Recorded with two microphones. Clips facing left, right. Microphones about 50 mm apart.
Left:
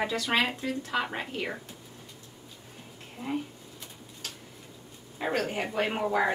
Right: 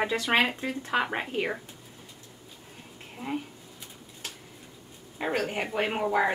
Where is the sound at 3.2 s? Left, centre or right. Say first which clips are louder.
Left 1 dB; centre.